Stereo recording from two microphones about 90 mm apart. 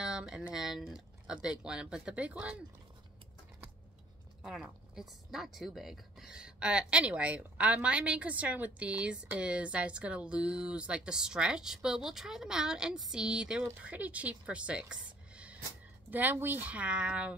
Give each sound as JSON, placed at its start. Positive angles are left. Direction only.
{"t": 0.0, "sound": "speech", "side_deg": -10}
{"t": 4.4, "sound": "speech", "side_deg": -5}